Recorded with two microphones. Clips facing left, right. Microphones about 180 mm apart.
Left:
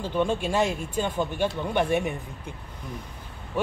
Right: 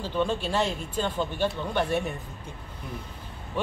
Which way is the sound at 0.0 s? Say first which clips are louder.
Left 2 dB; 15° left (ahead or behind).